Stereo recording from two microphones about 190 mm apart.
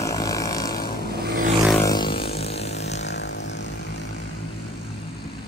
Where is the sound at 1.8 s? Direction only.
20° left (ahead or behind).